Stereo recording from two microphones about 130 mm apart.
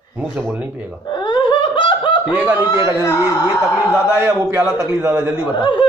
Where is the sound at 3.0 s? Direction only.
25° left (ahead or behind).